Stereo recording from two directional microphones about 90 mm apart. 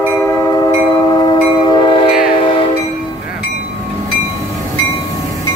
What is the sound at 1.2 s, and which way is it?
Train, 55° left (ahead or behind).